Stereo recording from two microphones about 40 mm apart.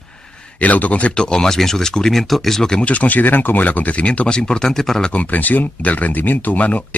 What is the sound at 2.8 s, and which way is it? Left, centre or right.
Speech, left.